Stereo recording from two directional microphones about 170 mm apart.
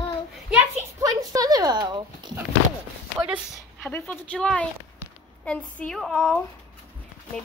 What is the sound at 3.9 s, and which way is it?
A woman's voice, 10° left (ahead or behind).